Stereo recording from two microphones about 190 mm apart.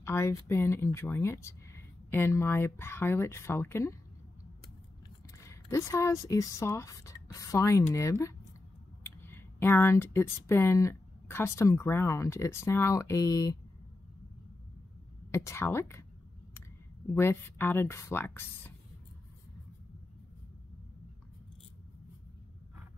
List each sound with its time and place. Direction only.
0.0 s speech: 15° left (ahead or behind)
5.4 s speech: 15° left (ahead or behind)
15.3 s speech: 15° left (ahead or behind)
17.1 s speech: 15° left (ahead or behind)